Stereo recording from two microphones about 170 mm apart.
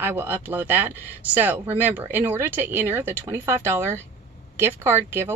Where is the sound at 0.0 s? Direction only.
15° right (ahead or behind).